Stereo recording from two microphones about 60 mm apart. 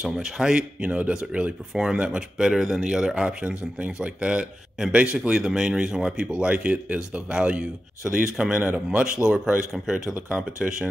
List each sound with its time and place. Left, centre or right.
0.0 s speech: centre